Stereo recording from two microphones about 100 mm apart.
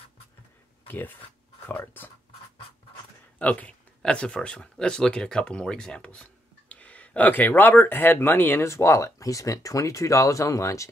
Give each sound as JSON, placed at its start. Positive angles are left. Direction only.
{"t": 0.8, "sound": "speech", "side_deg": 20}
{"t": 3.3, "sound": "speech", "side_deg": 15}